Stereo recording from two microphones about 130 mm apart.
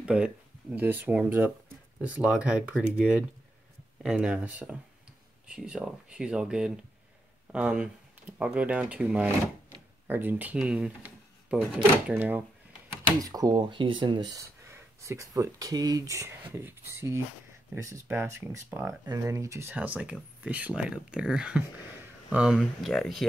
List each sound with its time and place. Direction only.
0.0 s speech: 5° right (ahead or behind)
13.2 s speech: 30° right (ahead or behind)
14.7 s speech: 25° right (ahead or behind); by 23.2 s centre (ahead or behind)